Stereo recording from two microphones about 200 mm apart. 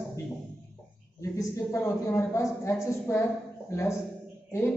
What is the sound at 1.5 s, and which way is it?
A woman's voice, 15° left (ahead or behind).